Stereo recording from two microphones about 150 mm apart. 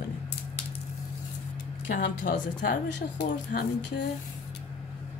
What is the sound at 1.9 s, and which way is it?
Speech, 60° left (ahead or behind).